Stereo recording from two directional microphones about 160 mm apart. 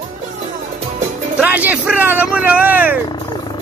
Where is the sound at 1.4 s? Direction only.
10° right (ahead or behind).